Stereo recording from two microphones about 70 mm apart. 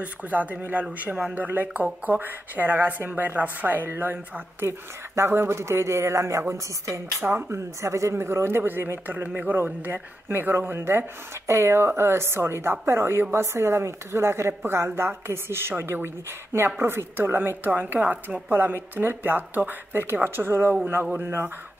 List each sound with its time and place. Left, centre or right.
0.0 s speech: right
7.2 s speech: right
7.5 s speech: right